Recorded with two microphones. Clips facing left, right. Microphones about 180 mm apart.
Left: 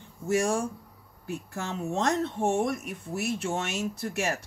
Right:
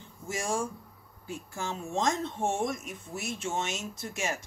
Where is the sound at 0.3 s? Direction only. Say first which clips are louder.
Left 6 dB; 65° left (ahead or behind).